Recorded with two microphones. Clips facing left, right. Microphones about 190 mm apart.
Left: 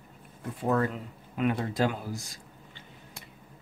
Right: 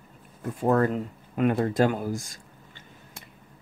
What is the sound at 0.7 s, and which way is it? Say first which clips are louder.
Speech: right 4 dB; 45° right (ahead or behind).